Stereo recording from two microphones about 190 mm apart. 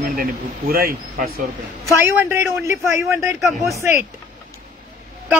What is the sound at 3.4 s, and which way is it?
Speech, centre (ahead or behind).